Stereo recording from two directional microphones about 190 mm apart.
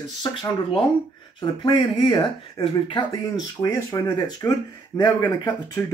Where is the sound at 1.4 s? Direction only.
25° left (ahead or behind).